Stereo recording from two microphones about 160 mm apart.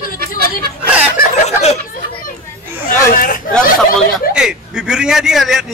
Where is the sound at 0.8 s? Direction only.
10° right (ahead or behind).